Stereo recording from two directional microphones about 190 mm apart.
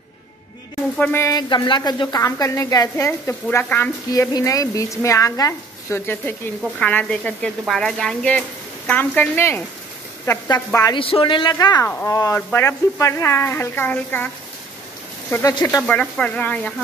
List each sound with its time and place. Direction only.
0.9 s a woman's voice: 10° left (ahead or behind)
15.3 s a woman's voice: 15° left (ahead or behind)